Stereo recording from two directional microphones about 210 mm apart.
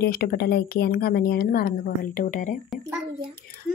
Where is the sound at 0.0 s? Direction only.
45° left (ahead or behind).